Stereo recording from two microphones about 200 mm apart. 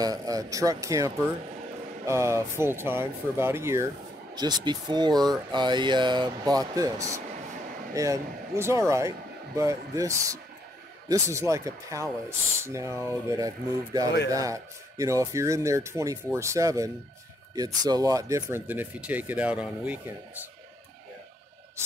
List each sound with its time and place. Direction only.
0.0 s speech: 20° right (ahead or behind)